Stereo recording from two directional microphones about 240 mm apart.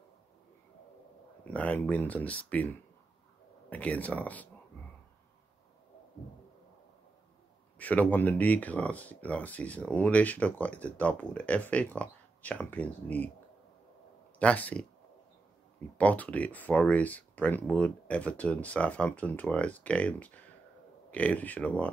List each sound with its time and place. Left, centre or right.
1.5 s speech: centre
3.7 s speech: centre
7.8 s speech: centre
14.4 s speech: centre
16.0 s speech: centre